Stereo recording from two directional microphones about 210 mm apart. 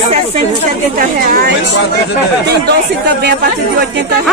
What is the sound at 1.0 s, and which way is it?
Speech, 45° right (ahead or behind).